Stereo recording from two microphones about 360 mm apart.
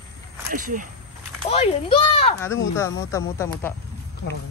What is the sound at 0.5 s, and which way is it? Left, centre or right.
Speech, right.